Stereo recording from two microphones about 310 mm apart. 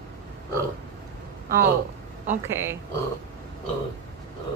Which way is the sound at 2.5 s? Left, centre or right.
Centre.